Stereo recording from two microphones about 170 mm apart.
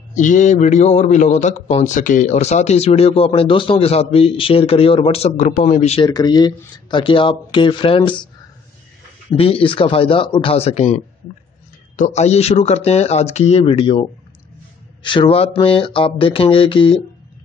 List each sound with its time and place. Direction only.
0.1 s a man's voice: 45° left (ahead or behind)
6.0 s speech: 25° left (ahead or behind)
9.3 s a man's voice: 35° left (ahead or behind)
12.0 s a man's voice: 40° left (ahead or behind)
15.0 s a man's voice: 30° left (ahead or behind)